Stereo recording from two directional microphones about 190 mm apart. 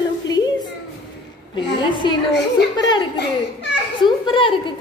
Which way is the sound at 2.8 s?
25° left (ahead or behind).